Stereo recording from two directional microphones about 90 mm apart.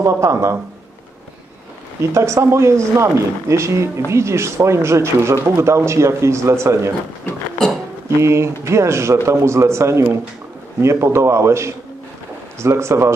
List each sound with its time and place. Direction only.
0.0 s speech: 35° right (ahead or behind)
2.1 s speech: 30° right (ahead or behind)
8.2 s speech: 30° right (ahead or behind)